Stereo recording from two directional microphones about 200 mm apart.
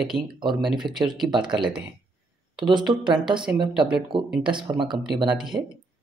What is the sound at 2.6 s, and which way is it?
Speech, 25° right (ahead or behind).